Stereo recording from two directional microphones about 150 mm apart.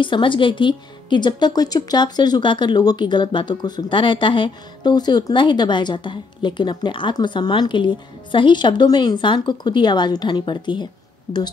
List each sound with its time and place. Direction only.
0.0 s a woman's voice: 35° left (ahead or behind)